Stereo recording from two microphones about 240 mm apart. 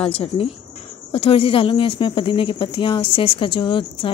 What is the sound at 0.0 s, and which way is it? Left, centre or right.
A woman's voice, left.